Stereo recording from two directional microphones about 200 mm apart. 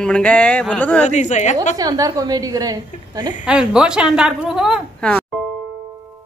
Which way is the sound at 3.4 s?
5° right (ahead or behind).